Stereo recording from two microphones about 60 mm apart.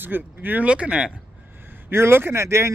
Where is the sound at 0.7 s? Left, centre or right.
Centre.